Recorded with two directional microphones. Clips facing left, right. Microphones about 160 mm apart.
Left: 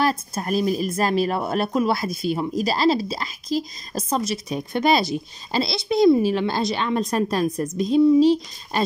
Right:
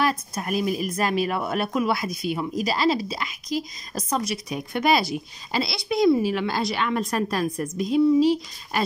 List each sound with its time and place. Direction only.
0.0 s speech: 30° left (ahead or behind)